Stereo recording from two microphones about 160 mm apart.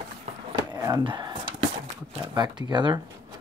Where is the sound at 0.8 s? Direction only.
30° right (ahead or behind).